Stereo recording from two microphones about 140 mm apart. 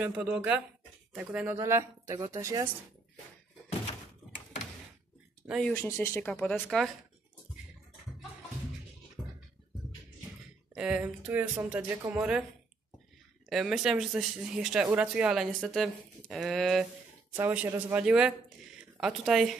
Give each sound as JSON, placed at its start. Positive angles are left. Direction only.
{"t": 0.0, "sound": "speech", "side_deg": -10}
{"t": 1.6, "sound": "a woman's voice", "side_deg": -20}
{"t": 5.5, "sound": "speech", "side_deg": 5}
{"t": 5.8, "sound": "speech", "side_deg": 20}
{"t": 6.7, "sound": "speech", "side_deg": 5}
{"t": 10.7, "sound": "speech", "side_deg": -10}
{"t": 12.2, "sound": "speech", "side_deg": -5}
{"t": 13.5, "sound": "speech", "side_deg": 0}
{"t": 17.4, "sound": "speech", "side_deg": -15}